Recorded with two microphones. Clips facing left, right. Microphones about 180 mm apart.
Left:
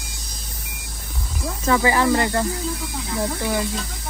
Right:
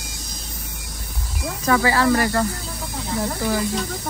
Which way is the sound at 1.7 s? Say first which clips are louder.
Even; 20° left (ahead or behind).